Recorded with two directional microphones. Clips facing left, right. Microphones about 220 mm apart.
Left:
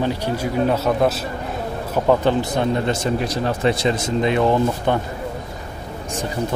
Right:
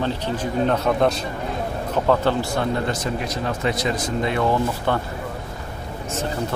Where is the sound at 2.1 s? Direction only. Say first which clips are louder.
Left 3 dB; 20° left (ahead or behind).